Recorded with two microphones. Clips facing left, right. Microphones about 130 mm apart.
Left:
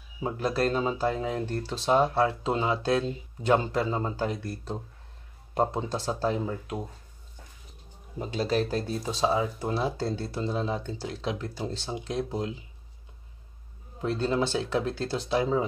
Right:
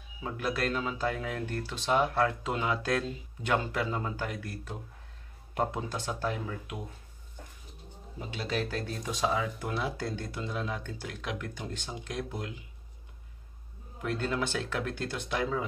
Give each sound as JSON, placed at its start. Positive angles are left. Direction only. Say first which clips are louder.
{"t": 0.2, "sound": "speech", "louder": "left 5 dB", "side_deg": 30}
{"t": 8.2, "sound": "speech", "louder": "left 7 dB", "side_deg": 40}
{"t": 14.5, "sound": "speech", "louder": "left 5 dB", "side_deg": 20}